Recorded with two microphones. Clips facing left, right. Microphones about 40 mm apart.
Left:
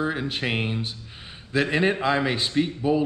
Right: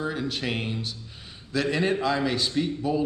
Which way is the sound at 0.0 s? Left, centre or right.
Left.